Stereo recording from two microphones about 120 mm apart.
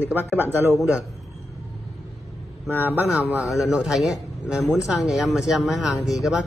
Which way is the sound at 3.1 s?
5° right (ahead or behind).